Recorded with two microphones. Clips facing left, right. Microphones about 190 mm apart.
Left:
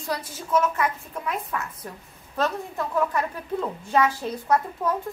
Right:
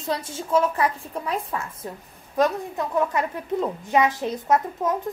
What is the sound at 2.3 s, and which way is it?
A woman's voice, 15° right (ahead or behind).